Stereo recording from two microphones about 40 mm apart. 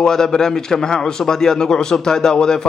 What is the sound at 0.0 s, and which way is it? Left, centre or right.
A man's voice, centre.